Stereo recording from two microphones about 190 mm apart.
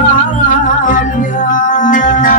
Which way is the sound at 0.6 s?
45° left (ahead or behind).